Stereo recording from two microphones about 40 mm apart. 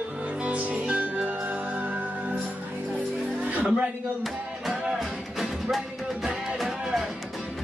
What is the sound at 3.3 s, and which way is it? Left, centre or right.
Music, right.